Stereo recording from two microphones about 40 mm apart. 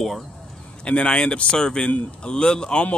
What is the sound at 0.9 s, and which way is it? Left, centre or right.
Speech, left.